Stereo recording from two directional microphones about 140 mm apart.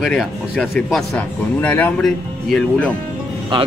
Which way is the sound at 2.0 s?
5° left (ahead or behind).